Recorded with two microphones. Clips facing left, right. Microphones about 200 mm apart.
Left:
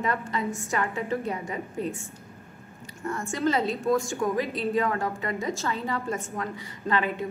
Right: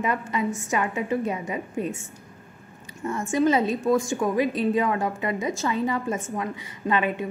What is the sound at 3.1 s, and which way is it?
A woman's voice, 20° right (ahead or behind).